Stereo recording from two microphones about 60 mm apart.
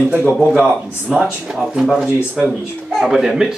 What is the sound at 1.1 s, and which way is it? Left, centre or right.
Speech, centre.